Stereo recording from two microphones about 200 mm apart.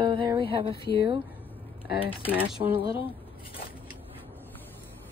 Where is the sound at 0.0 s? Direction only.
20° right (ahead or behind).